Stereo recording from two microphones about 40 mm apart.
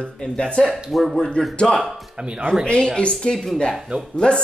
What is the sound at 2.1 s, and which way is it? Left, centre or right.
Speech, right.